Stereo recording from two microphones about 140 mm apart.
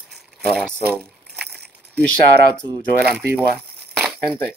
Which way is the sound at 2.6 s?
30° right (ahead or behind).